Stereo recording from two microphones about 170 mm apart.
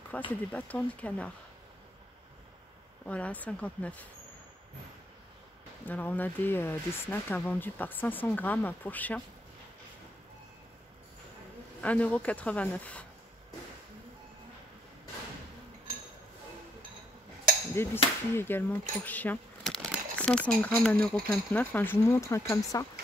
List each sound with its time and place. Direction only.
0.3 s speech: 10° left (ahead or behind)
3.1 s speech: 10° left (ahead or behind)
5.9 s speech: 10° left (ahead or behind)
11.8 s speech: 10° left (ahead or behind)
17.7 s speech: 15° left (ahead or behind)